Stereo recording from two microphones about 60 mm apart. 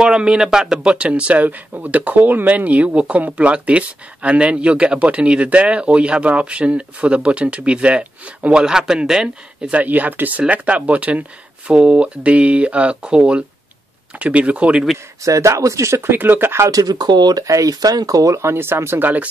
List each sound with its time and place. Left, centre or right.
0.0 s speech: centre
9.8 s speech: right
15.2 s speech: right
16.1 s speech: right
16.6 s speech: right
18.4 s speech: right